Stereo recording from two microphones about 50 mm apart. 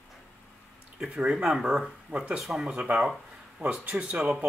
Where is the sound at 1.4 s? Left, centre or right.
Centre.